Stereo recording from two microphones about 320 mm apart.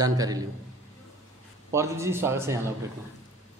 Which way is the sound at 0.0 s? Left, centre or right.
Centre.